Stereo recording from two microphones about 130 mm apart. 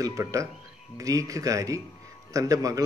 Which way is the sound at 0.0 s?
25° right (ahead or behind).